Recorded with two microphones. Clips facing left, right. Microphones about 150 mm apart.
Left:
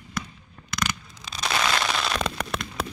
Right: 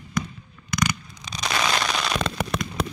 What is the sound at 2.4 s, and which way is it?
Fireworks, centre (ahead or behind).